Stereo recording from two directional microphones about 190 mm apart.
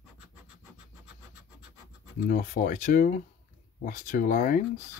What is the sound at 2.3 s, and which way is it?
Speech, 45° left (ahead or behind).